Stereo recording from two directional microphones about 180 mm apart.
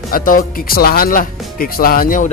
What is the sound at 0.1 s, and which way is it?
Speech, 50° left (ahead or behind).